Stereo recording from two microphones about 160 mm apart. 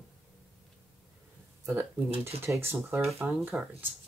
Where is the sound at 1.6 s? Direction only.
20° right (ahead or behind).